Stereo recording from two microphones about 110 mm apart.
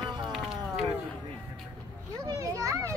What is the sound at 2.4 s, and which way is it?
Children playing, 30° right (ahead or behind).